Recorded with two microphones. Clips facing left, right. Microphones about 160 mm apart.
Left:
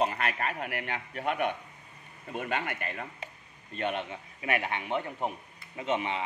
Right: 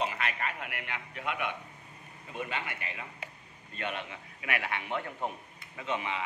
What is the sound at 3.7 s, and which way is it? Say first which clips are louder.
Speech: left 5 dB; 30° left (ahead or behind).